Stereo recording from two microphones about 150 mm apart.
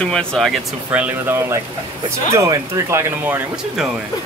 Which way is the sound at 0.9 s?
10° right (ahead or behind).